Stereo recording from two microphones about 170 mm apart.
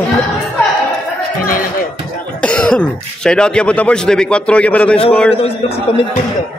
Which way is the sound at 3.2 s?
5° left (ahead or behind).